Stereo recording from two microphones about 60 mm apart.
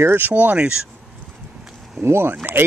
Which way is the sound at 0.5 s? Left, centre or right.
Centre.